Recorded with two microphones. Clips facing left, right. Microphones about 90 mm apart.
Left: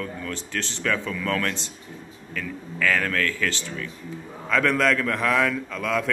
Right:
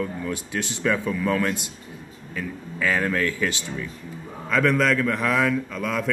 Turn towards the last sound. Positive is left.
turn(degrees=-5)  # may be behind; listen again after turning